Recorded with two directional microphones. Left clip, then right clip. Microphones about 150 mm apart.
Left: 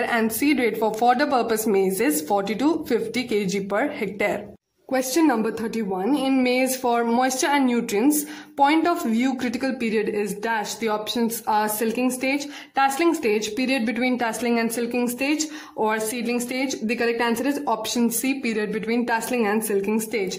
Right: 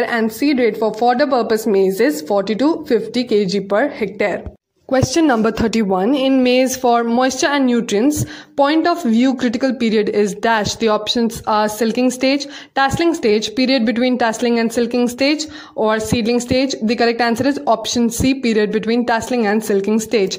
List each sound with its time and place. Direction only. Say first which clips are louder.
0.4 s a woman's voice: right 6 dB; 20° right (ahead or behind)
5.3 s speech: right 8 dB; 50° right (ahead or behind)
6.4 s speech: right 7 dB; 45° right (ahead or behind)
6.9 s a woman's voice: right 5 dB; 30° right (ahead or behind)
17.5 s a woman's voice: right 8 dB; 25° right (ahead or behind)
18.2 s speech: right 9 dB; 35° right (ahead or behind)